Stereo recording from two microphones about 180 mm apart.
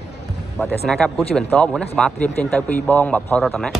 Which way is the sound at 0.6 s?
10° left (ahead or behind).